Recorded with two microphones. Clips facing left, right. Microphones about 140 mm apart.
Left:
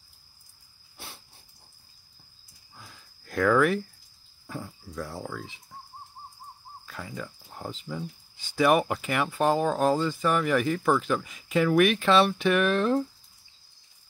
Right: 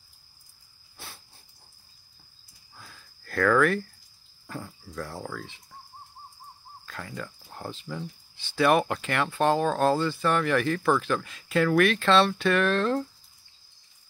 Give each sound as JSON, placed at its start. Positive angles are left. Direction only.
{"t": 0.9, "sound": "dog", "side_deg": 20}
{"t": 2.7, "sound": "a sound", "side_deg": 15}
{"t": 4.5, "sound": "speech", "side_deg": 10}
{"t": 6.9, "sound": "speech", "side_deg": 10}